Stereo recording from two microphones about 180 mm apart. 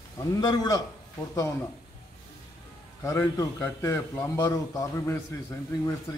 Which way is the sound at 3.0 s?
15° left (ahead or behind).